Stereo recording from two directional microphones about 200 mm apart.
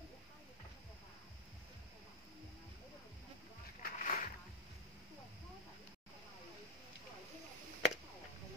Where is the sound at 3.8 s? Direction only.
45° left (ahead or behind).